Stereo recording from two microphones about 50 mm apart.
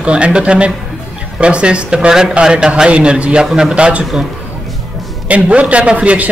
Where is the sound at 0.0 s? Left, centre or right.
Right.